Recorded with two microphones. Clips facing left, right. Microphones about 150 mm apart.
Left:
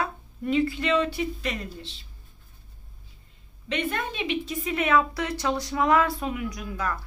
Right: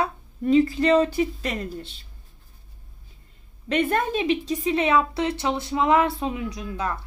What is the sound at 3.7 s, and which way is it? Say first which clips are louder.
A woman's voice: right 7 dB; 45° right (ahead or behind).